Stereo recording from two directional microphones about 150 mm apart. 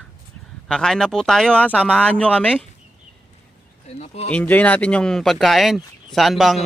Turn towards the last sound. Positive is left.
turn(degrees=0)  # may be behind; listen again after turning